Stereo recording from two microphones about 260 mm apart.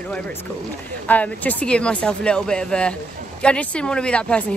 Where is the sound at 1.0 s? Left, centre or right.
Centre.